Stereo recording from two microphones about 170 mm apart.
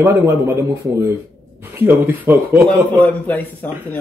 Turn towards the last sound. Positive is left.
turn(degrees=10)  # may be behind; listen again after turning